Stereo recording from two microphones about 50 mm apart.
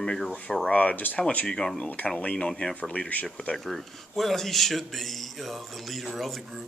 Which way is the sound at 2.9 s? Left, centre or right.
Left.